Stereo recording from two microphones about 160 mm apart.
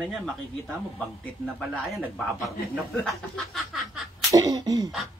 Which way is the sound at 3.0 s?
Centre (ahead or behind).